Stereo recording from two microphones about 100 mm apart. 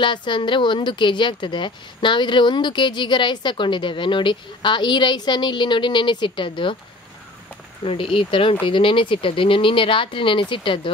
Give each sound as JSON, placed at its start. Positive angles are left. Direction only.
{"t": 0.0, "sound": "speech", "side_deg": 50}
{"t": 7.8, "sound": "speech", "side_deg": 65}